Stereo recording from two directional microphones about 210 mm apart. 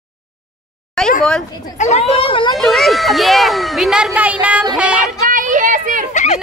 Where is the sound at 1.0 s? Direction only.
5° left (ahead or behind).